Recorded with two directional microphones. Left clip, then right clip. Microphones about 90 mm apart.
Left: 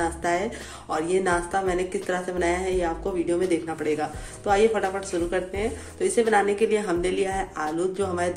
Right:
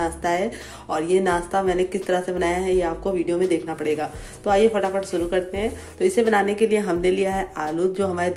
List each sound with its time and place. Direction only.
0.0 s speech: 45° right (ahead or behind)